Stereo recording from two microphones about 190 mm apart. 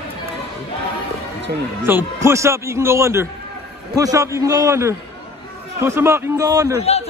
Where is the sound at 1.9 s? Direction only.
10° right (ahead or behind).